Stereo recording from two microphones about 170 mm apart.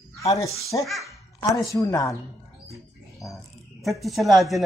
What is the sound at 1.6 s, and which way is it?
Speech, 20° left (ahead or behind).